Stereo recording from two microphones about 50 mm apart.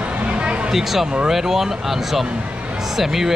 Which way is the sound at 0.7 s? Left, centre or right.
Centre.